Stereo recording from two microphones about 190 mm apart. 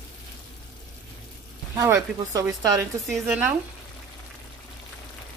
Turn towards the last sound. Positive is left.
turn(degrees=-5)  # may be behind; listen again after turning